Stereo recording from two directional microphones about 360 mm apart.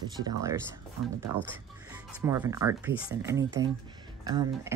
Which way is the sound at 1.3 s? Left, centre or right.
Right.